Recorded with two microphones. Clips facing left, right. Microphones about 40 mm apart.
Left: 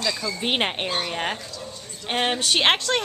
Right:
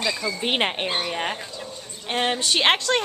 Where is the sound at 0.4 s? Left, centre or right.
Centre.